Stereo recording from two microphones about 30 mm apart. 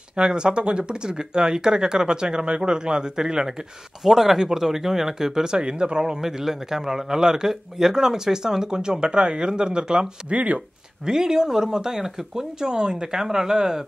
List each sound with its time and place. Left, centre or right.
0.1 s a man's voice: right
4.0 s speech: centre
5.5 s a man's voice: right
6.2 s a man's voice: centre
10.3 s speech: right
11.1 s a man's voice: right
12.5 s a man's voice: right